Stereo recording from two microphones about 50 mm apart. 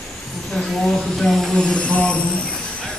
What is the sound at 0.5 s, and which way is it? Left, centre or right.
Speech, centre.